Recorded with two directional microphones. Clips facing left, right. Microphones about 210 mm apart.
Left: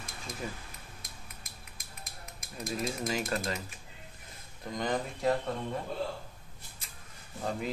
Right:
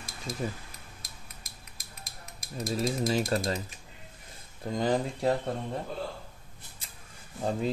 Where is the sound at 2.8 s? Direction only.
35° right (ahead or behind).